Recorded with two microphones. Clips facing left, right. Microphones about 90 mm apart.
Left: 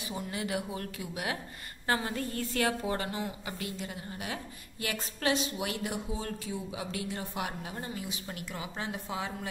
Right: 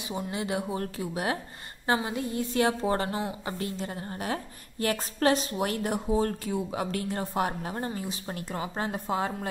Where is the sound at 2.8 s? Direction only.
35° right (ahead or behind).